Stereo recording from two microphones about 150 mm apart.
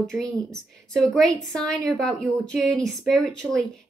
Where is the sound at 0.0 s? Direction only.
Centre (ahead or behind).